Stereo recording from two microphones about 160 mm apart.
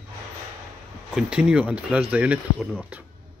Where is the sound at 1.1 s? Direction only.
5° right (ahead or behind).